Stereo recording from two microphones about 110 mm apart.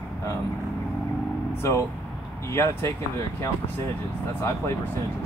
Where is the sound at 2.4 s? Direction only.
25° left (ahead or behind).